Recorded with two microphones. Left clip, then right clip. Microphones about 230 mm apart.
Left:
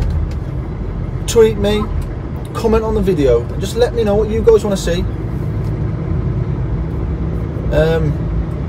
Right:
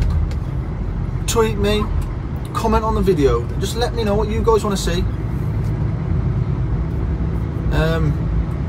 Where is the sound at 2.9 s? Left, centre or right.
Centre.